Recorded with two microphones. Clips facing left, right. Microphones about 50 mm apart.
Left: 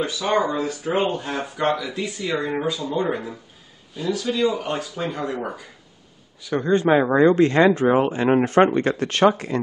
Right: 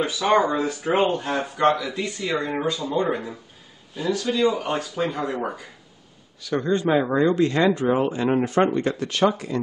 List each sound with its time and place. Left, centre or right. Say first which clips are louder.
0.0 s speech: right 2 dB; centre
1.0 s speech: right 2 dB; centre
6.4 s speech: left 1 dB; centre
6.7 s speech: left 4 dB; left
8.7 s speech: left 3 dB; left